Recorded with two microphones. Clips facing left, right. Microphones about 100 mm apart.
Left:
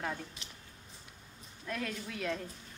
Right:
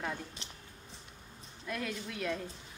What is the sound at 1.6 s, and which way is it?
Speech, centre (ahead or behind).